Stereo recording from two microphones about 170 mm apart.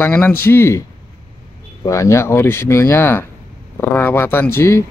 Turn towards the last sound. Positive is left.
turn(degrees=15)  # may be behind; listen again after turning